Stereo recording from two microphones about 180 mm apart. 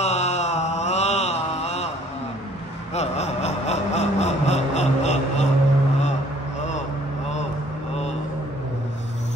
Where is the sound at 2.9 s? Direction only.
40° left (ahead or behind).